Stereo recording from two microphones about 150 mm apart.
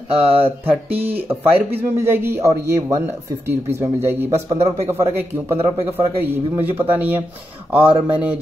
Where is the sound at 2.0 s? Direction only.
15° right (ahead or behind).